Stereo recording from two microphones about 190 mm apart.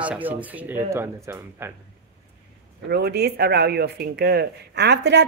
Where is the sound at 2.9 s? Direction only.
60° right (ahead or behind).